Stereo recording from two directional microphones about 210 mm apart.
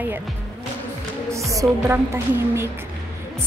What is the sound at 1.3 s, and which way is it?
Speech, 15° right (ahead or behind).